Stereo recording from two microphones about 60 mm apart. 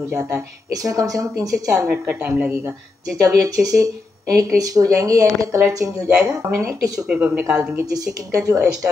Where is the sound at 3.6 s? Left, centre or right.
Right.